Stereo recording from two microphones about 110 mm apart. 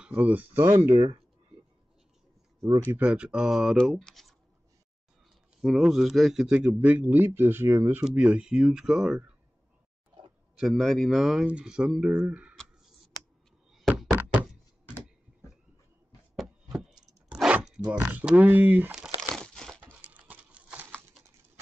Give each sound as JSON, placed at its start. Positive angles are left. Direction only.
{"t": 0.0, "sound": "speech", "side_deg": -15}
{"t": 0.7, "sound": "speech", "side_deg": -30}
{"t": 3.0, "sound": "speech", "side_deg": -10}
{"t": 5.6, "sound": "speech", "side_deg": 0}
{"t": 6.7, "sound": "speech", "side_deg": -15}
{"t": 8.0, "sound": "speech", "side_deg": -10}
{"t": 10.6, "sound": "speech", "side_deg": 0}
{"t": 13.7, "sound": "knock", "side_deg": -5}
{"t": 16.3, "sound": "a sound", "side_deg": 0}
{"t": 17.9, "sound": "speech", "side_deg": -15}
{"t": 18.9, "sound": "crumpling", "side_deg": -5}
{"t": 19.4, "sound": "crumpling", "side_deg": 5}
{"t": 19.8, "sound": "a sound", "side_deg": -15}